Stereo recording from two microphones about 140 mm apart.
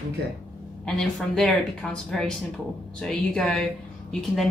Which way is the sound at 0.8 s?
5° left (ahead or behind).